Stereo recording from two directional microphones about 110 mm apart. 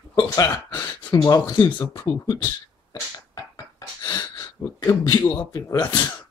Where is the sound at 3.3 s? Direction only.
35° left (ahead or behind).